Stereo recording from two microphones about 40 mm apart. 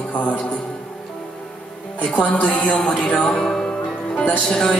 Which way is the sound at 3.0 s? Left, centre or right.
Left.